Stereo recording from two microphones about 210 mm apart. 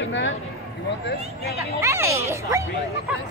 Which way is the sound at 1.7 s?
15° right (ahead or behind).